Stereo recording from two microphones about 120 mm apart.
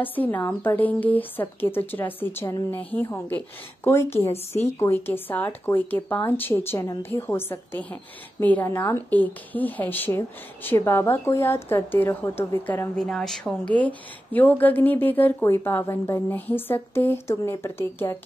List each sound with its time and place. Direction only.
0.0 s a woman's voice: 15° left (ahead or behind)
12.9 s a woman's voice: 5° left (ahead or behind); by 18.1 s 20° left (ahead or behind)